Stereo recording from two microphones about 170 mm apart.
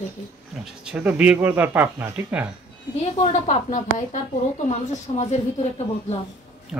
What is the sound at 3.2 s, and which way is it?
A woman's voice, 45° left (ahead or behind).